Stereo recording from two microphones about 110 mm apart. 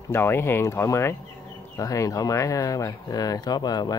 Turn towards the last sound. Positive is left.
turn(degrees=35)  # may be behind; listen again after turning